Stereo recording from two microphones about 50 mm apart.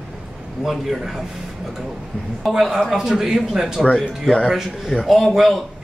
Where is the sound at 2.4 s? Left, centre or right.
Centre.